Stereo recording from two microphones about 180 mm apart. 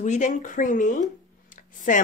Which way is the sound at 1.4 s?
45° left (ahead or behind).